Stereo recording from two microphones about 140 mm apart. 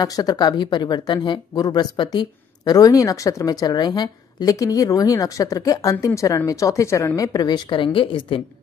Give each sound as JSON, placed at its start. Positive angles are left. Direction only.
{"t": 0.0, "sound": "speech", "side_deg": 30}